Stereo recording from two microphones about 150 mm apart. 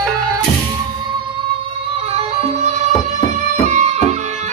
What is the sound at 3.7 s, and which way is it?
Music, 50° right (ahead or behind).